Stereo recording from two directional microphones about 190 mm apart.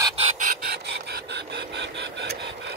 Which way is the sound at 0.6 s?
60° right (ahead or behind).